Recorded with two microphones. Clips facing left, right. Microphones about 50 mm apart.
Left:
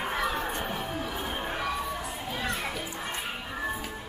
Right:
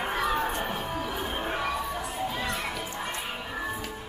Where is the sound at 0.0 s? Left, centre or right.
Centre.